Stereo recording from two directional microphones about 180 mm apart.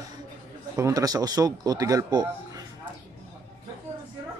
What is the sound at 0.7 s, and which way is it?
Speech, 20° right (ahead or behind).